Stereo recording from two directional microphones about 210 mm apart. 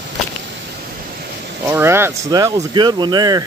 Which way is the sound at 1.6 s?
15° right (ahead or behind).